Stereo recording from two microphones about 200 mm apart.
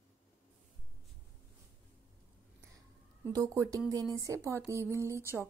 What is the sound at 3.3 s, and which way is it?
A woman's voice, 15° right (ahead or behind).